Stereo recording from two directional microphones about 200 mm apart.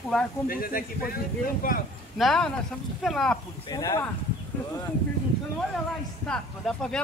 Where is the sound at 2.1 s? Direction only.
Centre (ahead or behind).